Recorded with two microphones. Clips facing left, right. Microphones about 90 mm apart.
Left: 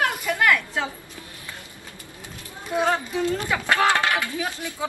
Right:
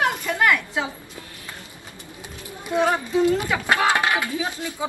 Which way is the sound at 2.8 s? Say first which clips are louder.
Right 4 dB; 10° right (ahead or behind).